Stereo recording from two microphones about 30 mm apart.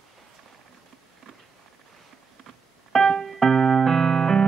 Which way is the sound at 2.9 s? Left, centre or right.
Centre.